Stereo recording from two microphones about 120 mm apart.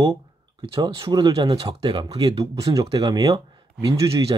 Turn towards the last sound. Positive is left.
turn(degrees=-30)  # may be behind; listen again after turning